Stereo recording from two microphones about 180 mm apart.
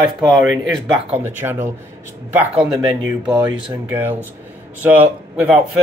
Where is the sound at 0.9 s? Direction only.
10° right (ahead or behind).